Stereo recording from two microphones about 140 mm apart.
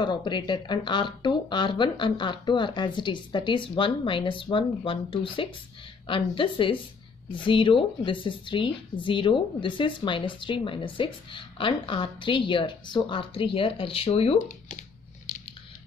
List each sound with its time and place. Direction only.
0.0 s a woman's voice: 35° left (ahead or behind)